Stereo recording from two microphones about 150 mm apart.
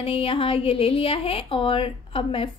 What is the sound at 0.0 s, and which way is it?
Speech, 35° left (ahead or behind).